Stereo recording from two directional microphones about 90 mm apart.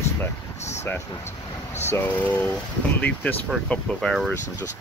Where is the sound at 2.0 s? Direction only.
15° left (ahead or behind).